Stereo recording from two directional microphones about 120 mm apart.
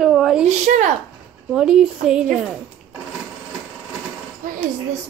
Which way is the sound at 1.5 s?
5° right (ahead or behind).